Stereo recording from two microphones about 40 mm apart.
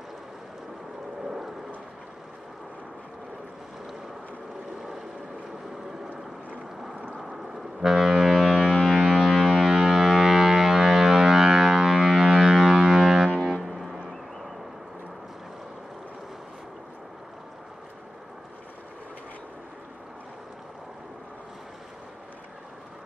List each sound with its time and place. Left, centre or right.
1.2 s vehicle: centre
4.7 s vehicle: centre
7.5 s ship: centre
13.6 s foghorn: centre